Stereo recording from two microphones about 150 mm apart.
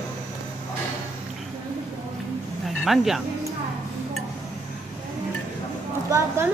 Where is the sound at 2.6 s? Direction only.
Centre (ahead or behind).